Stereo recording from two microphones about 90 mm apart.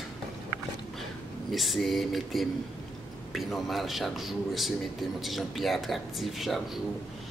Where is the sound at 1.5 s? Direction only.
Centre (ahead or behind).